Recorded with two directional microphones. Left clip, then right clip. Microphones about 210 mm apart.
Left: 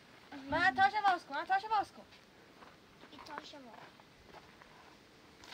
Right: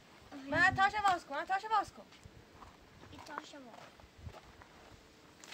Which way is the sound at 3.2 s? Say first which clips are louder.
Right 1 dB; 5° left (ahead or behind).